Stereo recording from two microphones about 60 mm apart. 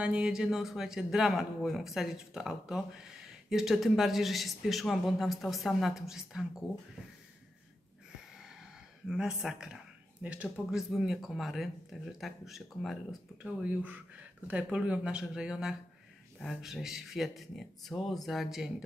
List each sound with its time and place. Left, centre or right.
0.0 s speech: right
0.3 s speech: centre
9.0 s speech: centre; by 10.5 s right
10.7 s speech: centre
13.4 s speech: centre